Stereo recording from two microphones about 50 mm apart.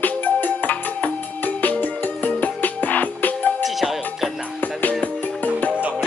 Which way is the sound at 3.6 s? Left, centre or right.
Centre.